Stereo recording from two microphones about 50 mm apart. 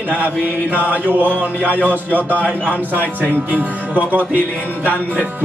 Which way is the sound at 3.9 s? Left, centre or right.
Right.